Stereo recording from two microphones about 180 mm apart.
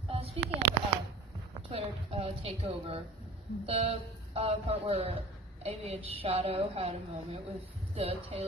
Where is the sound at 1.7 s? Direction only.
35° right (ahead or behind).